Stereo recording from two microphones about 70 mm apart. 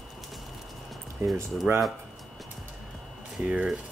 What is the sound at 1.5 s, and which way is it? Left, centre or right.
Speech, centre.